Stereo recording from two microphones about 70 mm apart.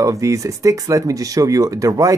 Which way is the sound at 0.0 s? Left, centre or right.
Right.